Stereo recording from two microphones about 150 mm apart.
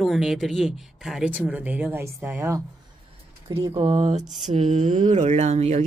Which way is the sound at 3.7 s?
40° right (ahead or behind).